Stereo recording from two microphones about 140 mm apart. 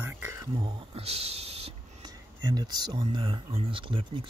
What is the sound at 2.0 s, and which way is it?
Speech, 30° right (ahead or behind).